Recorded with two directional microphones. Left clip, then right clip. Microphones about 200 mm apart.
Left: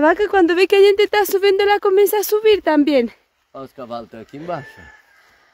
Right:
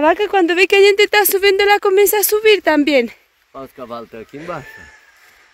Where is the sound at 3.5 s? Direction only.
60° left (ahead or behind).